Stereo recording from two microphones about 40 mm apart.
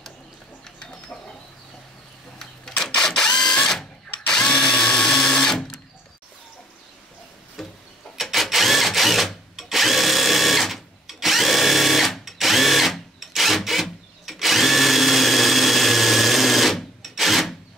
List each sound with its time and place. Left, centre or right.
0.7 s bird: left
2.7 s a sound: left
4.4 s drill: centre
7.6 s tick-tock: centre
8.2 s a sound: centre
9.6 s drill: centre